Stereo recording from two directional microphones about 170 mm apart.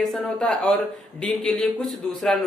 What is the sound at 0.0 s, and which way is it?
A man's voice, centre (ahead or behind).